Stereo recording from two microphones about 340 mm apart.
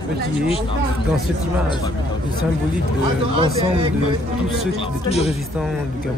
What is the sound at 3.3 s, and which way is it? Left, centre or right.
Speech, centre.